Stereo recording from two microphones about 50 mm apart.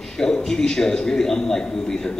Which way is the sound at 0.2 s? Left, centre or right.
Centre.